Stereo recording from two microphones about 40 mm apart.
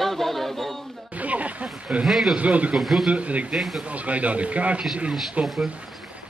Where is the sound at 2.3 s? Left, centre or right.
Right.